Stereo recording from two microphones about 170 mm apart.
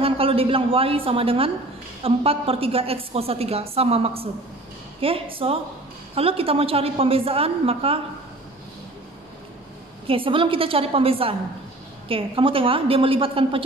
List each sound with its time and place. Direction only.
0.0 s a woman's voice: 35° right (ahead or behind)
10.0 s a woman's voice: 30° right (ahead or behind)